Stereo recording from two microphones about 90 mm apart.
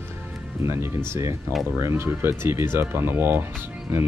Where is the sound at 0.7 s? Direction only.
30° right (ahead or behind).